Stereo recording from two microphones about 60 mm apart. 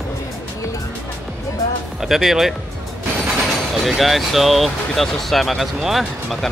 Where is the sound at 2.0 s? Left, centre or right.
Centre.